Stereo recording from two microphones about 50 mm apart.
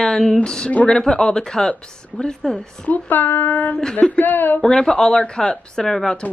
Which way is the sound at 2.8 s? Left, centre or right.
Left.